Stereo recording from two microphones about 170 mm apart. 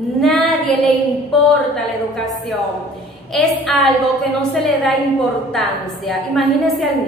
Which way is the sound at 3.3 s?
Centre (ahead or behind).